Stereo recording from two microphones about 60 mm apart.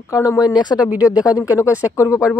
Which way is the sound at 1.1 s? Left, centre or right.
Right.